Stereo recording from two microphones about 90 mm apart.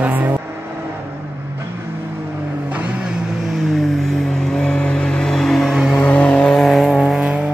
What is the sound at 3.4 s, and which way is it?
Vehicle, centre (ahead or behind).